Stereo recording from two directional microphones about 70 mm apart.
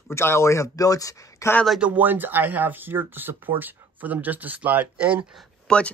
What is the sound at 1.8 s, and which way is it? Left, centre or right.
Speech, right.